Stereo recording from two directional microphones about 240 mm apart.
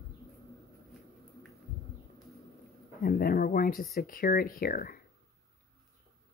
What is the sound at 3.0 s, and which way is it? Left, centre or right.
Speech, left.